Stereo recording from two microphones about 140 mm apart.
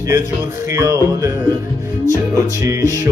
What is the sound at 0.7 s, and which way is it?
Music, 25° right (ahead or behind).